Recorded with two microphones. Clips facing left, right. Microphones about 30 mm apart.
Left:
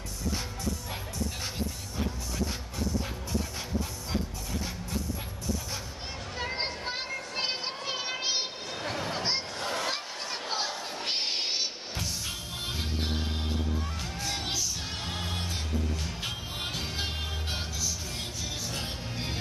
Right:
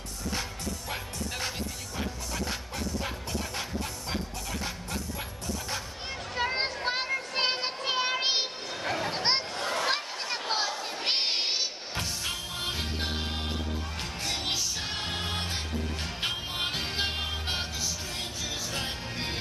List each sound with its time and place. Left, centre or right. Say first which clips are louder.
6.3 s a sound: right 4 dB; right
7.8 s music: right 7 dB; right
9.0 s a sound: right 3 dB; right
9.6 s a sound: right 3 dB; centre
11.0 s crowd: right 3 dB; right
12.6 s music: right 1 dB; right
14.2 s music: right 2 dB; right
16.2 s music: right 4 dB; right
18.7 s music: right 2 dB; right